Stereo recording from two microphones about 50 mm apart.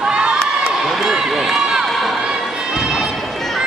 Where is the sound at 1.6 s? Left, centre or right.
Centre.